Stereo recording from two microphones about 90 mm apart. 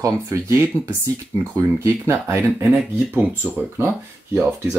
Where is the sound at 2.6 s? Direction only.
20° right (ahead or behind).